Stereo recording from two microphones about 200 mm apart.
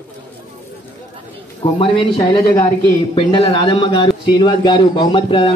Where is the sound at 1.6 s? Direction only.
25° left (ahead or behind).